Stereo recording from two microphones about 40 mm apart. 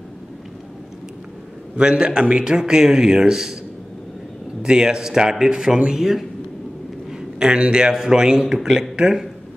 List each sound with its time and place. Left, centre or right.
1.8 s a man's voice: right
4.6 s a man's voice: centre